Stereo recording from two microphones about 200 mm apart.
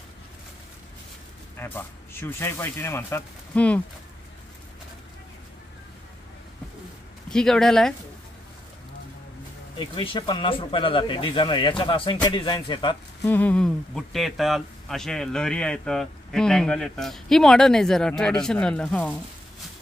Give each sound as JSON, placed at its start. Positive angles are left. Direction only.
{"t": 1.6, "sound": "speech", "side_deg": 10}
{"t": 7.2, "sound": "speech", "side_deg": 5}
{"t": 9.9, "sound": "speech", "side_deg": 25}
{"t": 13.3, "sound": "speech", "side_deg": 10}